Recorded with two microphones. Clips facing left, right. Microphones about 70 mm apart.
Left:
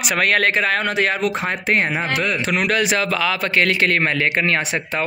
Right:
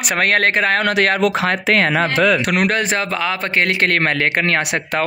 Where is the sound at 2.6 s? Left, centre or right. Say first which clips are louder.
Right 1 dB; right.